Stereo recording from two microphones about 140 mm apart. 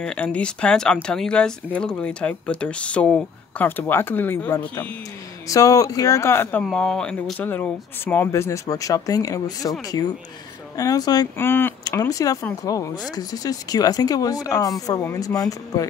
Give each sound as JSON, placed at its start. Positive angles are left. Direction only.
{"t": 0.0, "sound": "speech", "side_deg": 10}
{"t": 5.5, "sound": "speech", "side_deg": 25}
{"t": 6.6, "sound": "speech", "side_deg": 5}
{"t": 11.3, "sound": "speech", "side_deg": 15}